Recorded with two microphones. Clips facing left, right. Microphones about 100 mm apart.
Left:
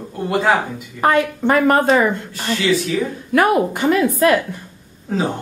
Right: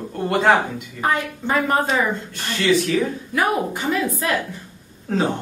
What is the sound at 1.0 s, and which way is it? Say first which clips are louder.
A woman's voice: left 7 dB; 65° left (ahead or behind).